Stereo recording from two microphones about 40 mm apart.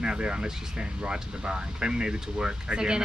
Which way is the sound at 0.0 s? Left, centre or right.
Right.